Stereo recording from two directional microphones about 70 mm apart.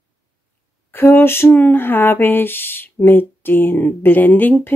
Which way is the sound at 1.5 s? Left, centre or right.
Left.